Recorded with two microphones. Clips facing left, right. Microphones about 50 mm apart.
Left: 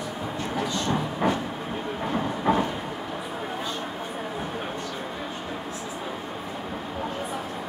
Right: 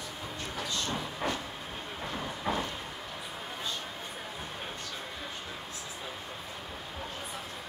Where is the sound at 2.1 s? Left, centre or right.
Left.